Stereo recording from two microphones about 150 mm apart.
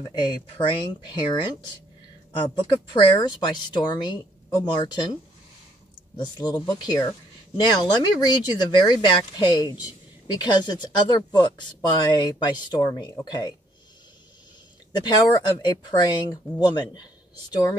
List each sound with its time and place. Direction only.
0.1 s speech: 30° left (ahead or behind)
2.6 s speech: 30° left (ahead or behind)
6.1 s speech: 30° left (ahead or behind)
14.9 s speech: 30° left (ahead or behind)